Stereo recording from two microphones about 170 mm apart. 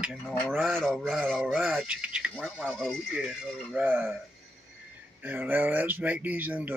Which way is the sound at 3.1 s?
5° right (ahead or behind).